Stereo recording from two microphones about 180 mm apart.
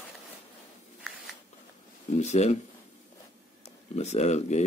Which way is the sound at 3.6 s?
40° left (ahead or behind).